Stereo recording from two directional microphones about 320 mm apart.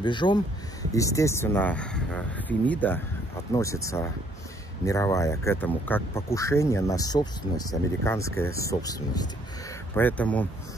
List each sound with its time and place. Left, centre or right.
0.0 s speech: centre